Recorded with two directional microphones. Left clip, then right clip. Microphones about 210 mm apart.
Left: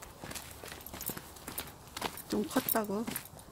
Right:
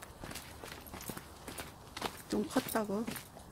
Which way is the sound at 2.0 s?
10° left (ahead or behind).